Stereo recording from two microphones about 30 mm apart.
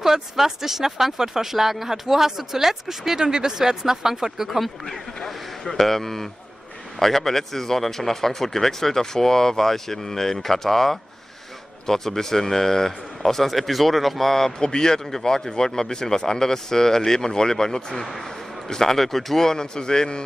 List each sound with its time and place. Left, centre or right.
0.0 s speech: centre
3.2 s speech: right
4.8 s speech: centre
14.6 s speech: left
15.0 s speech: centre
19.4 s speech: left